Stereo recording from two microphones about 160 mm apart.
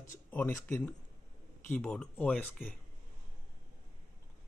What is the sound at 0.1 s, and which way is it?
Speech, 15° left (ahead or behind).